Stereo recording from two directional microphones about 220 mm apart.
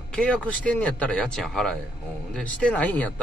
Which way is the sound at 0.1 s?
5° left (ahead or behind).